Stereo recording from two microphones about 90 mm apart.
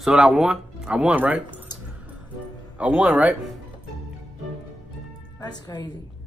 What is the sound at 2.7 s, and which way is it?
Speech, 15° right (ahead or behind).